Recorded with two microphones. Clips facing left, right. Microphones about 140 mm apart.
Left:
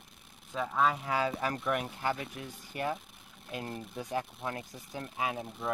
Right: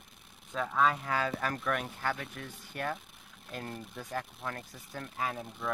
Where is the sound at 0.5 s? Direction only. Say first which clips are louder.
Even; 5° left (ahead or behind).